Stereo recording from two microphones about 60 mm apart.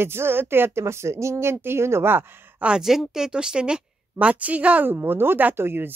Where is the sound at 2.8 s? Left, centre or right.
Centre; by 4.9 s right.